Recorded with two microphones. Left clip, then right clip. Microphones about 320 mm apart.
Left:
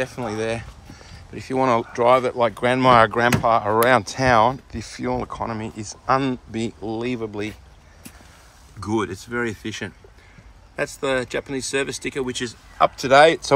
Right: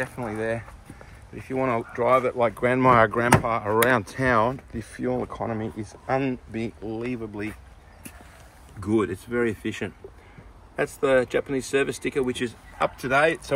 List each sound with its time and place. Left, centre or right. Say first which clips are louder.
0.0 s speech: left 4 dB; centre
8.7 s speech: even; centre